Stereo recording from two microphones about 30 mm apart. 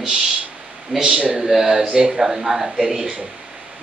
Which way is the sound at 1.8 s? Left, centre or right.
Right.